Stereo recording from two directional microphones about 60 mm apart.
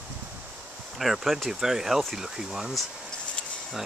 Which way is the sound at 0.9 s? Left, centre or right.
Centre.